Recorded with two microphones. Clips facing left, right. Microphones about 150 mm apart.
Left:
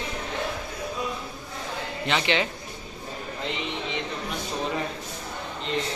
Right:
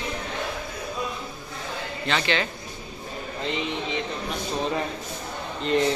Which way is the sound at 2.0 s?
15° left (ahead or behind).